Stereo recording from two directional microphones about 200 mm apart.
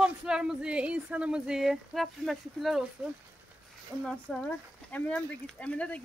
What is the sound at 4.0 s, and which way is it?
A woman's voice, 5° left (ahead or behind).